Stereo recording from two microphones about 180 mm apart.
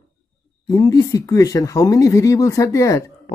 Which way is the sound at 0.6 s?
20° left (ahead or behind).